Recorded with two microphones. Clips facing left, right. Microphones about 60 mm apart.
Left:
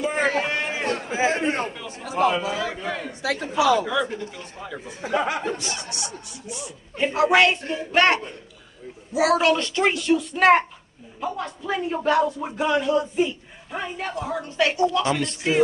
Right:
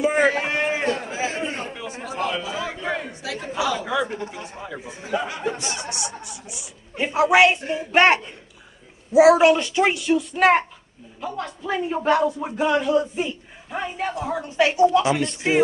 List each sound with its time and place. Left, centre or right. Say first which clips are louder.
0.0 s a sound: right 3 dB; centre
1.4 s a man's voice: left 4 dB; left
1.7 s a woman's voice: right 1 dB; centre
3.2 s a woman's voice: left 4 dB; left
3.8 s a woman's voice: even; centre
4.1 s speech: right 1 dB; right
4.4 s a woman's voice: right 2 dB; centre
5.1 s a woman's voice: left 3 dB; left
5.6 s a woman's voice: right 2 dB; right
7.9 s a woman's voice: right 3 dB; right; by 11.5 s centre
11.6 s a woman's voice: right 1 dB; centre